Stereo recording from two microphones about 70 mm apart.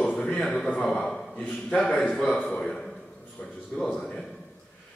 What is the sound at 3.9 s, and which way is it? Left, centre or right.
Speech, centre.